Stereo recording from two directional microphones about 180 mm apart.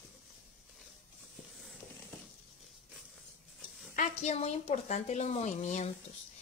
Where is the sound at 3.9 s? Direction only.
40° left (ahead or behind).